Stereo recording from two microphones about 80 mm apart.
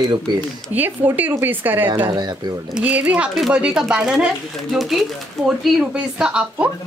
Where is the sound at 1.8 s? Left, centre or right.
Right.